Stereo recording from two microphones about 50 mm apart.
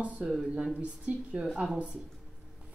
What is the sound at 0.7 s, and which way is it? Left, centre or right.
Speech, right.